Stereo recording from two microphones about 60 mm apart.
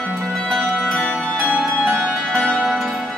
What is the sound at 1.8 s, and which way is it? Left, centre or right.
Harp, centre.